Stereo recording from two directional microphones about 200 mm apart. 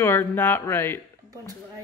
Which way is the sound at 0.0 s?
10° left (ahead or behind).